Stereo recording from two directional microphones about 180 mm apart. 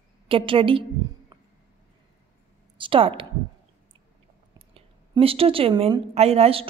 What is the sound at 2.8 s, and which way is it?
Speech, 30° right (ahead or behind).